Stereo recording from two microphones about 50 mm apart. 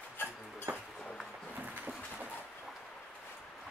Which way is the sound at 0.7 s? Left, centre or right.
Right.